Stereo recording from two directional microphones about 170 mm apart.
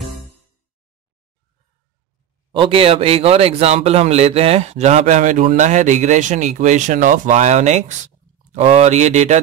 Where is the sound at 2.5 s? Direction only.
30° right (ahead or behind).